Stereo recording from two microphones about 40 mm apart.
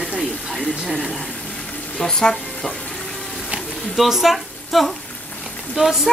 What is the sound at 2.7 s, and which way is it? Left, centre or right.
Frying, left.